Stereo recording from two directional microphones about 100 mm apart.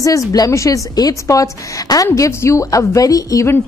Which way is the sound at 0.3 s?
35° left (ahead or behind).